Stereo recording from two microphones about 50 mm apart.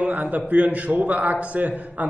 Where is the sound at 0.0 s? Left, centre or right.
Right.